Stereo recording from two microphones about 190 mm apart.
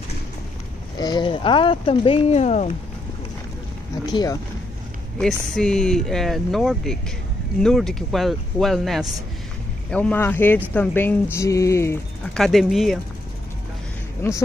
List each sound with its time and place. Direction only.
0.9 s speech: 20° left (ahead or behind)
4.0 s speech: 20° left (ahead or behind)
5.2 s speech: 5° left (ahead or behind)
12.4 s speech: centre (ahead or behind)
14.2 s speech: 15° left (ahead or behind)